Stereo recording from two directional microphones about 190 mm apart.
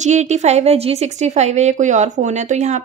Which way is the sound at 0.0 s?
40° right (ahead or behind).